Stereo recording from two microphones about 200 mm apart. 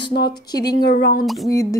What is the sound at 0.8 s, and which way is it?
Speech, 50° left (ahead or behind).